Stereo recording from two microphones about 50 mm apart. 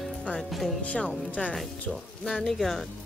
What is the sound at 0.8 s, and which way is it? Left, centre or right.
Speech, left.